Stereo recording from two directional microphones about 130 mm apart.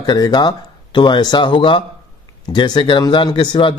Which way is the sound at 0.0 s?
30° left (ahead or behind).